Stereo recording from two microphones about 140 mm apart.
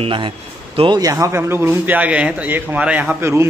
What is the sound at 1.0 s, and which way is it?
A man's voice, 25° right (ahead or behind).